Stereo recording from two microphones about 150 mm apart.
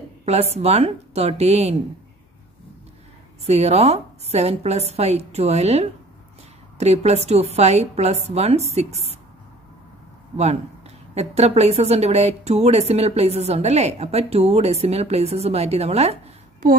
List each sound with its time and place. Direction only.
0.2 s speech: 45° right (ahead or behind)
3.4 s speech: 45° right (ahead or behind)
10.3 s speech: 45° right (ahead or behind)